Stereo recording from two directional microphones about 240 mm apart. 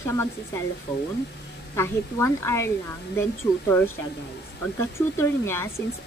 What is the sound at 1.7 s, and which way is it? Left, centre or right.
Speech, centre.